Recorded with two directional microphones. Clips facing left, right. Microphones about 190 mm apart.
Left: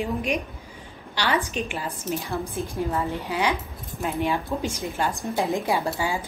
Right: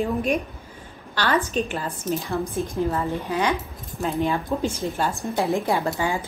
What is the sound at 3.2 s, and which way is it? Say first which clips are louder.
A woman's voice: right 2 dB; 10° left (ahead or behind).